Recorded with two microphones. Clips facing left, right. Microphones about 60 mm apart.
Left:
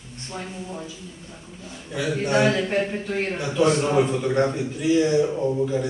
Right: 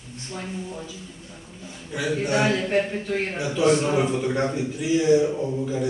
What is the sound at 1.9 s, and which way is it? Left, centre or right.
A man's voice, centre.